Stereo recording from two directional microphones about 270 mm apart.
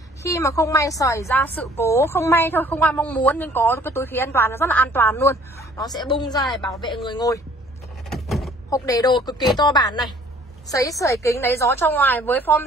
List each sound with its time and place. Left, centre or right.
0.2 s a woman's voice: centre
8.1 s door: centre
8.6 s a woman's voice: centre